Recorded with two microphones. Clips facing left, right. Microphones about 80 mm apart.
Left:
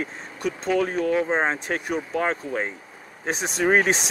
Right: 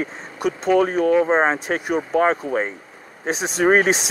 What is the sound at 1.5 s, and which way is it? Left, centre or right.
Speech, centre.